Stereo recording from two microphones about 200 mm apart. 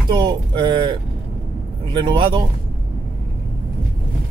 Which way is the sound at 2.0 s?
25° right (ahead or behind).